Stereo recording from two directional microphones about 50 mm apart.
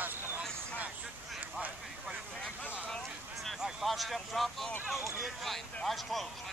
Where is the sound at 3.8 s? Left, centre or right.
Centre.